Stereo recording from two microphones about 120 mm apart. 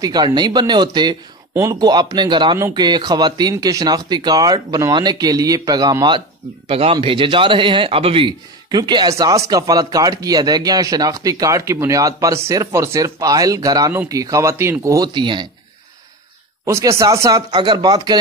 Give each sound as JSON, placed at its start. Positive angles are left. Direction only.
{"t": 0.0, "sound": "speech", "side_deg": -35}
{"t": 6.7, "sound": "a man's voice", "side_deg": -50}
{"t": 15.1, "sound": "speech", "side_deg": -40}
{"t": 16.6, "sound": "speech", "side_deg": -25}